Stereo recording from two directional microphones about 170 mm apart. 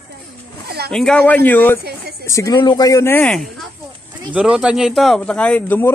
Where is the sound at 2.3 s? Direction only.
20° left (ahead or behind).